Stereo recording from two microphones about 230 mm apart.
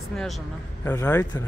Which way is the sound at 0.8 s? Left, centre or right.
Centre.